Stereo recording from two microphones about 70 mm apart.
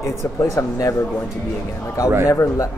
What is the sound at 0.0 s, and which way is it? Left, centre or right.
Speech, left.